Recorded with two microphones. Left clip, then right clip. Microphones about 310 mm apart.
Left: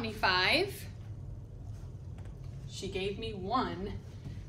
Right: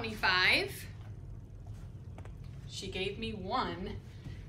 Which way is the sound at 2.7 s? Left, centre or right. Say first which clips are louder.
Left 1 dB; centre.